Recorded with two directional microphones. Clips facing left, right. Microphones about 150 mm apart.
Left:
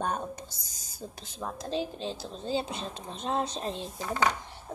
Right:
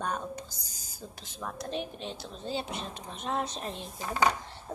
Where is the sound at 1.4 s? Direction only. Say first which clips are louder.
Left 3 dB; 30° left (ahead or behind).